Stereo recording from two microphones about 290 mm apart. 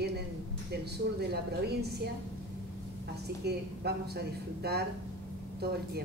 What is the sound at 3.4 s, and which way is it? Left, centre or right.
A woman's voice, right.